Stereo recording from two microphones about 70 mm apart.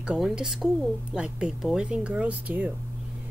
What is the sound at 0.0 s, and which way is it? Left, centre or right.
Speech, centre.